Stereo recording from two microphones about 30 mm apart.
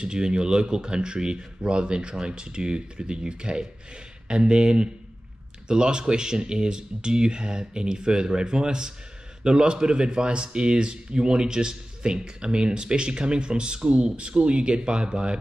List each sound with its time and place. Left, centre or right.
0.0 s speech: right